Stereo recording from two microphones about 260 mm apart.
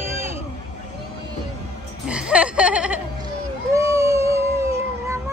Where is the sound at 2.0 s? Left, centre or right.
Centre.